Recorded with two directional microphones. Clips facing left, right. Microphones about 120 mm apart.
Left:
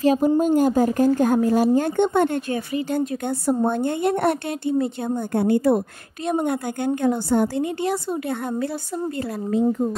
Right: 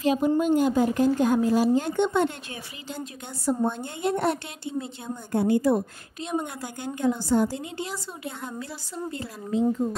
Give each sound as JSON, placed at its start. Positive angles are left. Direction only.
{"t": 0.0, "sound": "a woman's voice", "side_deg": 40}